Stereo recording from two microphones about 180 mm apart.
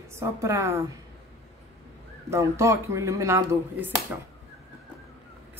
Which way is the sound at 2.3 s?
15° right (ahead or behind).